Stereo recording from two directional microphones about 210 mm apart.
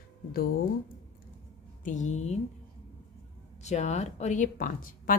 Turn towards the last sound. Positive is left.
turn(degrees=40)  # may be behind; listen again after turning